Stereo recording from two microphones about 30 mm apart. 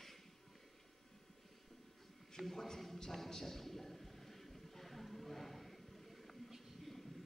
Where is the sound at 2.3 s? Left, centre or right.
Centre.